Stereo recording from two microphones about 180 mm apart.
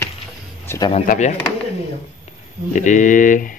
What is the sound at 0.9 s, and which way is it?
Speech, 45° left (ahead or behind).